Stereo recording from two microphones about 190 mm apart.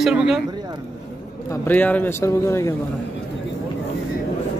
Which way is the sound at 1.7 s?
10° left (ahead or behind).